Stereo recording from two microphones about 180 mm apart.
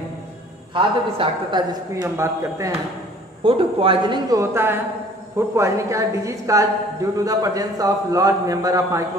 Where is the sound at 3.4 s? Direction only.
30° right (ahead or behind).